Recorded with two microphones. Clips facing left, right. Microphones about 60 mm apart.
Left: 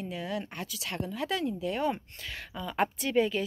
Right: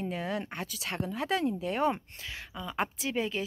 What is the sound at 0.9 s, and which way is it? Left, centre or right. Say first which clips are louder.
Speech: right 2 dB; right.